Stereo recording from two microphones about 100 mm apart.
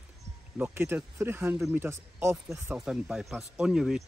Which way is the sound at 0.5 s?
20° right (ahead or behind).